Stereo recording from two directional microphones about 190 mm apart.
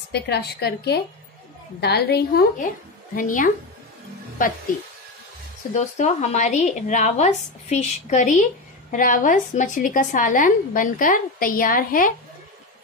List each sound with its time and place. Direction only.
0.1 s a woman's voice: 60° left (ahead or behind)
3.2 s a woman's voice: 45° left (ahead or behind)
5.8 s a woman's voice: 40° left (ahead or behind)